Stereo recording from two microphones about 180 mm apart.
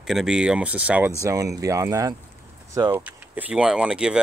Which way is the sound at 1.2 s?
20° right (ahead or behind).